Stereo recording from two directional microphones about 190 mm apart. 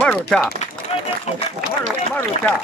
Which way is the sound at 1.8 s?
10° left (ahead or behind).